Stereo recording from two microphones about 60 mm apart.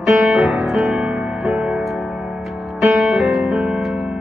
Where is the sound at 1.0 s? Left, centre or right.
Centre.